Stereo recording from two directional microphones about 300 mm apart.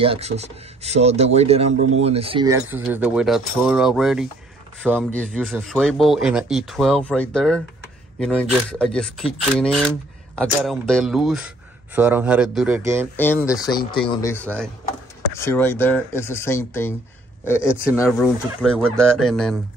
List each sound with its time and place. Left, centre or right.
0.0 s speech: centre
13.1 s speech: centre
18.0 s speech: centre